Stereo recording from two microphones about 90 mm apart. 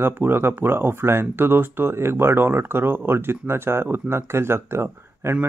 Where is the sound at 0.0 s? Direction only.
25° right (ahead or behind).